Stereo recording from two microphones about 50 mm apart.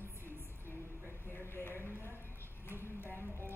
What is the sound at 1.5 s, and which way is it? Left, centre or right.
Clip-clop, left.